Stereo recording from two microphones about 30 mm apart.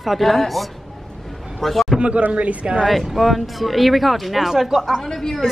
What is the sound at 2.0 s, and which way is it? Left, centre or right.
Speech, right.